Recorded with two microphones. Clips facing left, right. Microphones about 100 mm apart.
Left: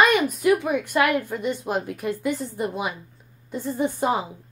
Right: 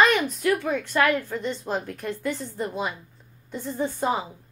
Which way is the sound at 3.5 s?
Centre (ahead or behind).